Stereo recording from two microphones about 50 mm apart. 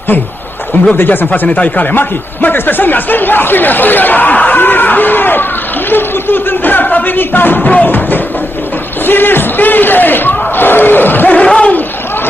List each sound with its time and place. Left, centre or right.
0.9 s speech: left
2.0 s speech: left
7.6 s music: left
9.0 s battle cry: left
11.4 s a sound: left